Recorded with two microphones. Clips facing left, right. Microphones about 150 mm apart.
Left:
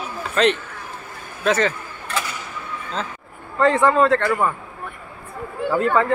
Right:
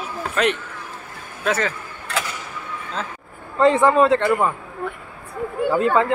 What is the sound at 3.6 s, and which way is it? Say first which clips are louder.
Speech: right 1 dB; 20° right (ahead or behind).